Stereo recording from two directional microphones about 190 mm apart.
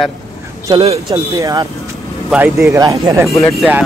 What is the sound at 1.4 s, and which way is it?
Speech, 20° right (ahead or behind).